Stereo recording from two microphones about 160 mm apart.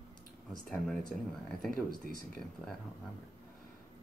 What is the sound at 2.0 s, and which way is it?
Speech, 60° right (ahead or behind).